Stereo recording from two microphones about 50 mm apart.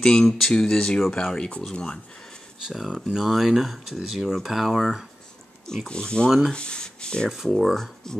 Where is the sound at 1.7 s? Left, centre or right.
Centre.